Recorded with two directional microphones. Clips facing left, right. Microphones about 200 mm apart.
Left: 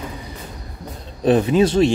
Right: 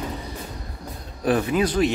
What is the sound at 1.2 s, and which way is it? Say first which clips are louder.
Speech: left 6 dB; 25° left (ahead or behind).